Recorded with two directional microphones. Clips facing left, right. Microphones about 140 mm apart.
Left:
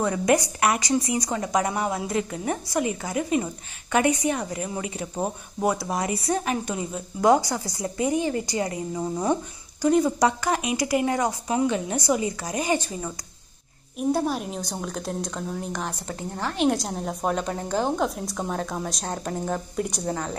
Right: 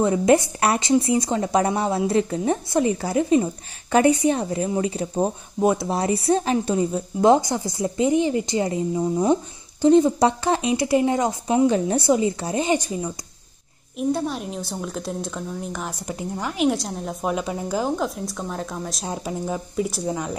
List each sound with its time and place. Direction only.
0.0 s a woman's voice: 25° right (ahead or behind)
5.1 s speech: 20° right (ahead or behind)
12.7 s speech: 15° right (ahead or behind)
13.9 s a woman's voice: centre (ahead or behind)